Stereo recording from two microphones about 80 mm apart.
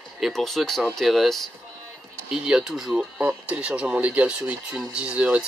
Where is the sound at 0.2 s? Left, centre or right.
Centre.